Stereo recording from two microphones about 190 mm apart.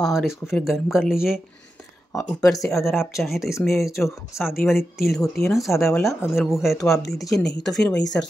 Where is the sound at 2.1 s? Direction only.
15° left (ahead or behind).